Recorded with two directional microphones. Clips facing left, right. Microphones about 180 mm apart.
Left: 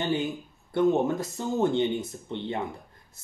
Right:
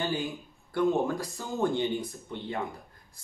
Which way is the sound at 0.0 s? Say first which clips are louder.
Left 4 dB; 25° left (ahead or behind).